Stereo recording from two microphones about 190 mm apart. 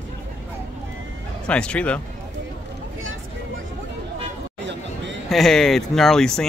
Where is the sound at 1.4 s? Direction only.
5° left (ahead or behind).